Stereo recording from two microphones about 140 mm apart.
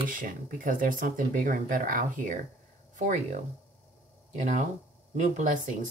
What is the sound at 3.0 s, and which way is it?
Speech, 60° right (ahead or behind).